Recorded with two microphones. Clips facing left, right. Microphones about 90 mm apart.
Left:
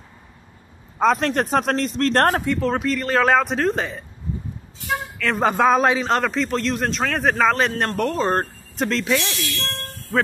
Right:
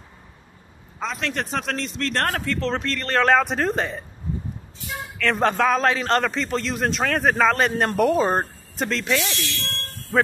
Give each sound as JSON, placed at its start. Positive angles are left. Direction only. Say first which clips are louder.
{"t": 0.9, "sound": "a man's voice", "louder": "left 9 dB", "side_deg": 45}
{"t": 2.3, "sound": "a man's voice", "louder": "left 4 dB", "side_deg": 15}
{"t": 5.2, "sound": "a man's voice", "louder": "right 1 dB", "side_deg": 0}
{"t": 5.5, "sound": "a man's voice", "louder": "left 6 dB", "side_deg": 20}
{"t": 5.9, "sound": "a man's voice", "louder": "left 1 dB", "side_deg": 0}